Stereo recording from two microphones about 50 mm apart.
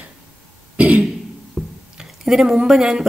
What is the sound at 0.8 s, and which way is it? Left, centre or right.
Throat clearing, right.